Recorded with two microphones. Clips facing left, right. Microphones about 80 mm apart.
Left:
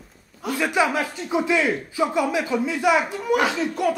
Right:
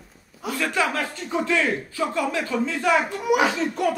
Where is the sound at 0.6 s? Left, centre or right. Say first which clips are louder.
Left 3 dB; centre.